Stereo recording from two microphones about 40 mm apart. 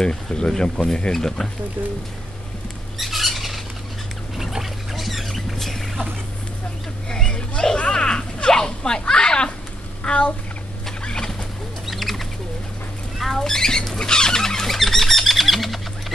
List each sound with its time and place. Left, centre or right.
0.0 s speech: left
1.1 s speech: centre
3.0 s squawk: centre
4.4 s rodents: centre
7.2 s a sound: left
11.0 s fowl: left
11.8 s bird: centre
13.4 s squawk: centre
13.9 s a sound: centre